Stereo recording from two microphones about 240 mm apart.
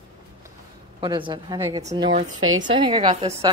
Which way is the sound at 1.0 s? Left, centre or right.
Centre.